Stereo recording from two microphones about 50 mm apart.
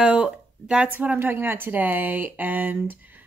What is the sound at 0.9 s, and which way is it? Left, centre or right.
Speech, right.